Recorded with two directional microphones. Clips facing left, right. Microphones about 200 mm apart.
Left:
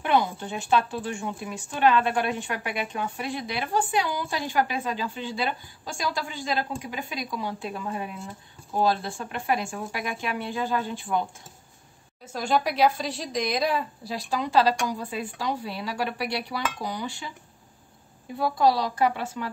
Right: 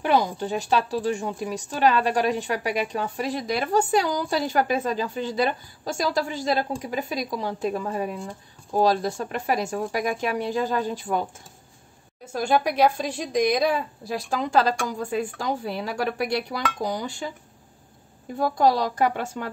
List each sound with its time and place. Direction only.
0.0 s speech: 35° right (ahead or behind)
12.4 s a woman's voice: 50° right (ahead or behind)
18.4 s a woman's voice: 45° right (ahead or behind)